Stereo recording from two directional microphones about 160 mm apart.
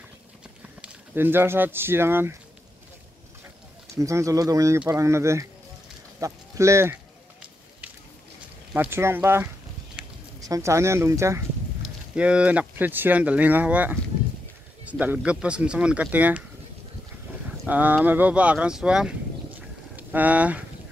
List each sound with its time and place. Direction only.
0.7 s speech: 10° right (ahead or behind)
3.9 s speech: 20° right (ahead or behind)
8.7 s speech: 15° right (ahead or behind)
10.0 s a sound: 5° right (ahead or behind)
10.4 s speech: 20° right (ahead or behind)
17.6 s speech: 10° right (ahead or behind)